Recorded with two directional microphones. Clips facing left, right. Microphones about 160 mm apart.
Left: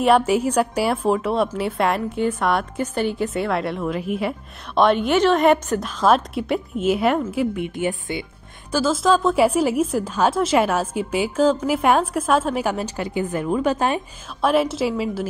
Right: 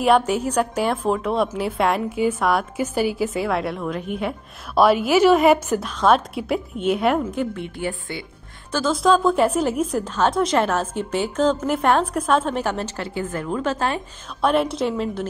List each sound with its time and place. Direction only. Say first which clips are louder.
0.0 s a woman's voice: left 1 dB; 5° left (ahead or behind)
7.6 s a woman's voice: left 4 dB; 20° left (ahead or behind)
8.7 s a woman's voice: even; 5° left (ahead or behind)
14.4 s a woman's voice: left 1 dB; centre (ahead or behind)